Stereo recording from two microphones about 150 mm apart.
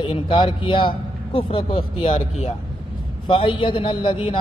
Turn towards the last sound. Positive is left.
turn(degrees=35)  # may be behind; listen again after turning